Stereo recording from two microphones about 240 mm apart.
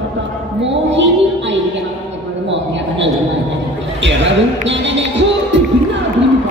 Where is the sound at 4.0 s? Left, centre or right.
Right.